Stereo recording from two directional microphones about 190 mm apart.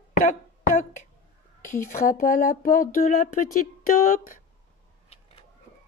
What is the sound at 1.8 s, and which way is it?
Speech, 45° left (ahead or behind).